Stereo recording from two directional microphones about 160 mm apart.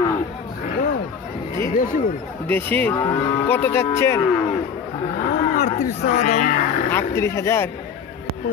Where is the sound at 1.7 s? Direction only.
60° left (ahead or behind).